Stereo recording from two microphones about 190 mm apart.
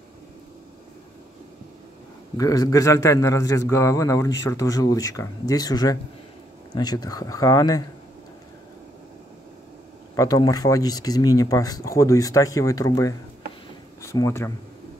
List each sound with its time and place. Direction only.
2.3 s a man's voice: 20° left (ahead or behind)
10.1 s a man's voice: 20° left (ahead or behind)